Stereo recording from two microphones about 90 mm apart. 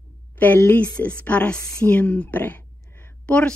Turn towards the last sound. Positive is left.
turn(degrees=15)  # may be behind; listen again after turning